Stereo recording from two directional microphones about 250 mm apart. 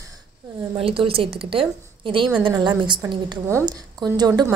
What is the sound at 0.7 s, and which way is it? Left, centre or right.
A woman's voice, right.